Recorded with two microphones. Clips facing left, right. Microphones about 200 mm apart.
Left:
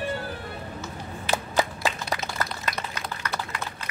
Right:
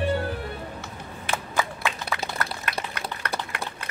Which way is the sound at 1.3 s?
35° left (ahead or behind).